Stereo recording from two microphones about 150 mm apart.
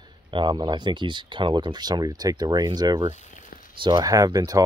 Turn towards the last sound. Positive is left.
turn(degrees=-25)  # may be behind; listen again after turning